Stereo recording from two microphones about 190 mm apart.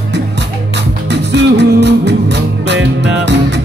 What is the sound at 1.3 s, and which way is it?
Music, 65° right (ahead or behind).